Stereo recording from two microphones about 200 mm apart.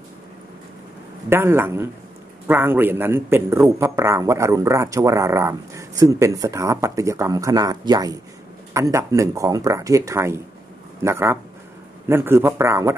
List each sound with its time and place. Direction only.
1.3 s speech: 10° right (ahead or behind)